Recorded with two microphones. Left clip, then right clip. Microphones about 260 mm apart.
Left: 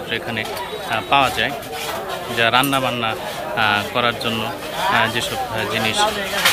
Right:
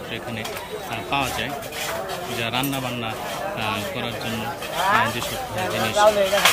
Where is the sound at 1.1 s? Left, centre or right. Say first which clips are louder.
Left 8 dB; centre.